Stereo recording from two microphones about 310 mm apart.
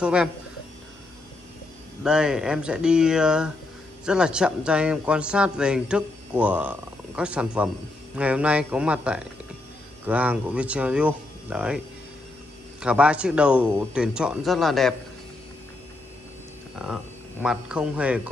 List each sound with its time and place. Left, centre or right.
0.0 s a man's voice: centre
2.0 s a man's voice: centre
12.8 s a man's voice: centre
16.7 s speech: centre